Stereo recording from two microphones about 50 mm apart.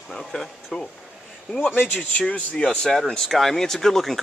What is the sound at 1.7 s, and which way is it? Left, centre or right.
Speech, left.